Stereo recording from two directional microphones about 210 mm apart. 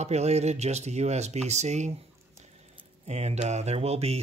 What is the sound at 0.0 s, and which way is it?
Speech, 30° right (ahead or behind).